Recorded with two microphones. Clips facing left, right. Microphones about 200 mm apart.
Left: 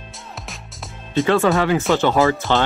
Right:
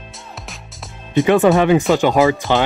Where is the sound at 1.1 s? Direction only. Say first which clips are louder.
Right 4 dB; 15° right (ahead or behind).